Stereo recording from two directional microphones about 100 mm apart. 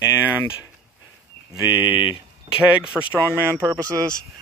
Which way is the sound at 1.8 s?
50° left (ahead or behind).